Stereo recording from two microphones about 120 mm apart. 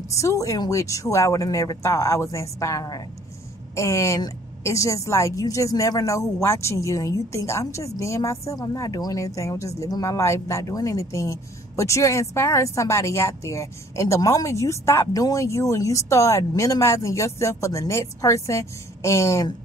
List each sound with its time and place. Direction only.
0.1 s speech: 25° left (ahead or behind)